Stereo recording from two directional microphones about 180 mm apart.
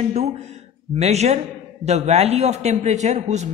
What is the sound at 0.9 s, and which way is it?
A man's voice, 35° right (ahead or behind).